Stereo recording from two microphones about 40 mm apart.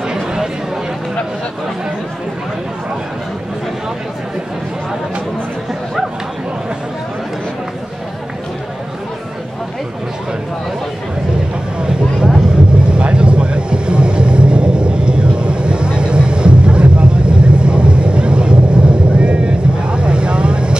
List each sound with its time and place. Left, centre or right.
0.1 s chatter: centre
11.8 s vehicle: right